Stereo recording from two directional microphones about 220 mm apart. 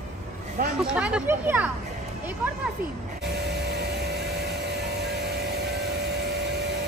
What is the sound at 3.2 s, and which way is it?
Vehicle, 50° right (ahead or behind).